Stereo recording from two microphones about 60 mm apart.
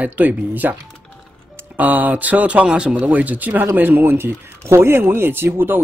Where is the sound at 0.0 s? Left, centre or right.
Right.